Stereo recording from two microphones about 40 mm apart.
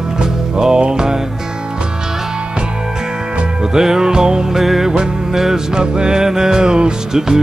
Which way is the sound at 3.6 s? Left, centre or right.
Centre.